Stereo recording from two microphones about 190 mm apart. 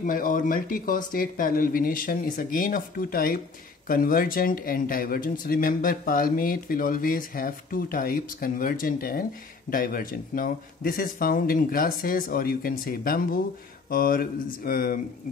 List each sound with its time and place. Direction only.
0.0 s speech: 45° left (ahead or behind)